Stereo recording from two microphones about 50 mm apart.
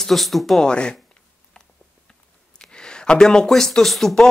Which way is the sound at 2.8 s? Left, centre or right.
Centre.